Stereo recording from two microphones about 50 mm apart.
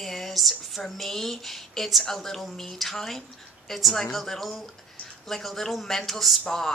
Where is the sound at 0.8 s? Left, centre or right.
Centre.